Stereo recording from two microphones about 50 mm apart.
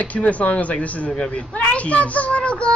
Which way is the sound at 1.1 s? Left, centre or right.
Centre.